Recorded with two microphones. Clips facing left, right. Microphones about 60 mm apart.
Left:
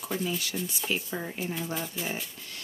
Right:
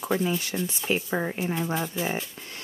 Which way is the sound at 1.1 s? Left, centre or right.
Right.